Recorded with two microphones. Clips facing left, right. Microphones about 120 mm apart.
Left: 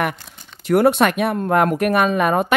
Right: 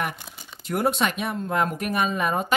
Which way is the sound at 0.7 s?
70° left (ahead or behind).